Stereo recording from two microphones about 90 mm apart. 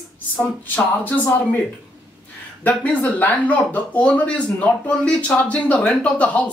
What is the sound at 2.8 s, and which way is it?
Speech, 15° left (ahead or behind).